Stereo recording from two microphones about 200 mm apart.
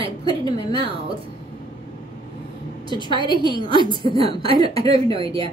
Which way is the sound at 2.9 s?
20° left (ahead or behind).